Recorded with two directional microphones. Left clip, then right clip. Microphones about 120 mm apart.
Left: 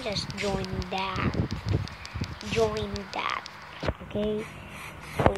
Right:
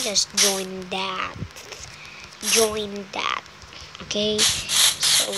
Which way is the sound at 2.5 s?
25° right (ahead or behind).